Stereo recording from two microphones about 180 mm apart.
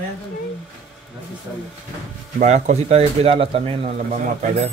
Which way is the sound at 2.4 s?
40° right (ahead or behind).